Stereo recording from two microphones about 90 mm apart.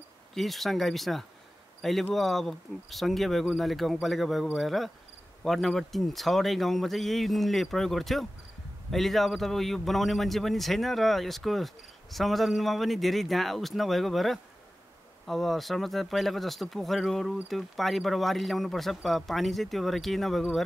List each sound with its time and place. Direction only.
0.3 s a man's voice: centre (ahead or behind)